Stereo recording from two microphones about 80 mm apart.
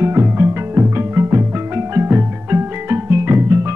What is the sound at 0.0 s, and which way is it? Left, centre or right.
Music, right.